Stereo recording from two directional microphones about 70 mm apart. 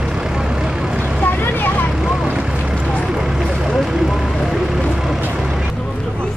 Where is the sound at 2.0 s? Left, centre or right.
Centre.